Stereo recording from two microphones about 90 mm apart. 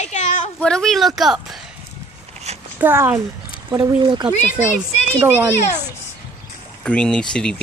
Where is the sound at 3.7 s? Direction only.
45° right (ahead or behind).